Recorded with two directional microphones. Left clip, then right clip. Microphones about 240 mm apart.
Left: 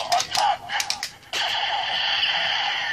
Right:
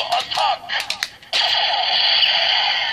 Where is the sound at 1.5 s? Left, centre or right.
Right.